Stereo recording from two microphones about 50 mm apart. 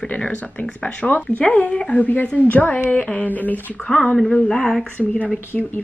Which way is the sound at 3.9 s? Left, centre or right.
Left.